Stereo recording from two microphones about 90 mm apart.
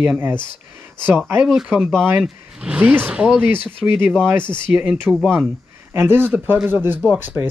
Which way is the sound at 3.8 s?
20° right (ahead or behind).